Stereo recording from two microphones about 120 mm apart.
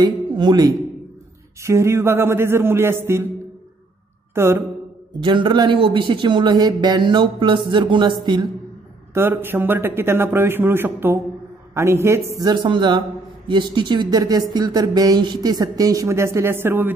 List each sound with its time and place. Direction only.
0.0 s speech: 35° right (ahead or behind)
1.6 s a man's voice: 25° right (ahead or behind)
4.4 s a man's voice: 20° right (ahead or behind)
5.2 s speech: 40° right (ahead or behind)
9.1 s a man's voice: 20° right (ahead or behind)